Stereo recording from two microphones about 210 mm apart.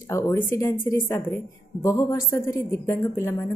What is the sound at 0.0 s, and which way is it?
Speech, 15° left (ahead or behind).